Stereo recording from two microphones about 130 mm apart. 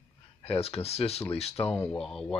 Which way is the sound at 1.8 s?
5° left (ahead or behind).